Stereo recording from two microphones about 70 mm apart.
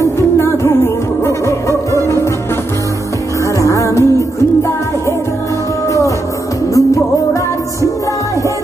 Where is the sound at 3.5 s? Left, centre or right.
Left.